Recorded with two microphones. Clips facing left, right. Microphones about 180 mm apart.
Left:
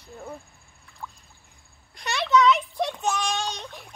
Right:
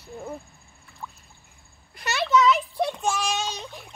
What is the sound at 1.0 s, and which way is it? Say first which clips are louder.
Boat: even; 5° right (ahead or behind).